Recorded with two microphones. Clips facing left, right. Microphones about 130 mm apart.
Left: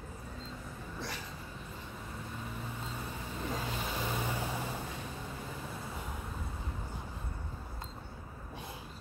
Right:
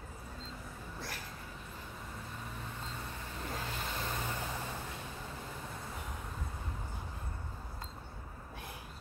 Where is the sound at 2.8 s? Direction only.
10° left (ahead or behind).